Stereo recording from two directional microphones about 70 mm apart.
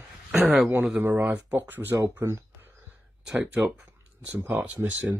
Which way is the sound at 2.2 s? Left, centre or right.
Right.